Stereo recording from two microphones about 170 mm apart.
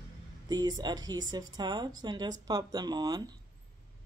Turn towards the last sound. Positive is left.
turn(degrees=-25)  # may be behind; listen again after turning